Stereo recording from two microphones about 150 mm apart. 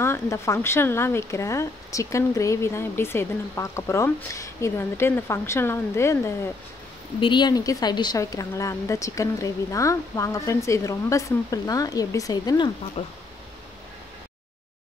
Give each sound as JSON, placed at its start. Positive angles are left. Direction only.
{"t": 0.0, "sound": "speech", "side_deg": 20}
{"t": 7.2, "sound": "a woman's voice", "side_deg": 30}
{"t": 13.0, "sound": "speech", "side_deg": 40}